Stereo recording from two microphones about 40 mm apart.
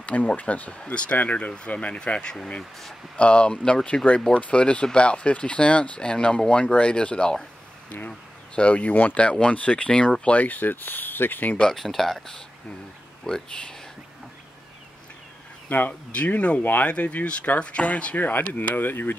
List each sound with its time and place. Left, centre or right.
0.0 s speech: left
8.5 s speech: left
10.4 s speech: left
11.7 s speech: centre
15.7 s speech: left
16.3 s speech: left
18.5 s speech: left